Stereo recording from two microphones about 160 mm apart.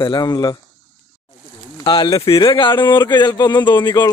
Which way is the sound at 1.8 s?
25° left (ahead or behind).